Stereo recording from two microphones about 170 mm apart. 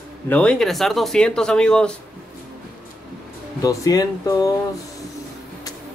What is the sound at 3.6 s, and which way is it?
Speech, 20° left (ahead or behind).